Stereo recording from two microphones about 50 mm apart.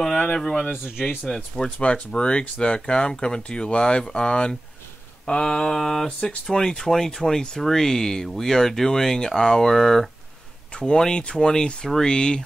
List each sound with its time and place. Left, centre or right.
0.4 s speech: centre
1.8 s speech: centre